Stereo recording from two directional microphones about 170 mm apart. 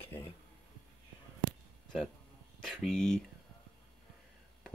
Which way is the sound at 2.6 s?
5° left (ahead or behind).